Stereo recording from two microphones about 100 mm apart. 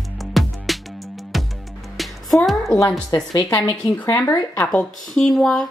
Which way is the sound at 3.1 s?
40° left (ahead or behind).